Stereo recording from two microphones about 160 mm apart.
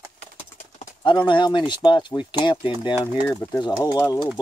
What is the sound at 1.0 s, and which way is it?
Speech, 30° left (ahead or behind).